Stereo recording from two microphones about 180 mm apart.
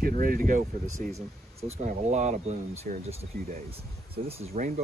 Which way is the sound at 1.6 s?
40° right (ahead or behind).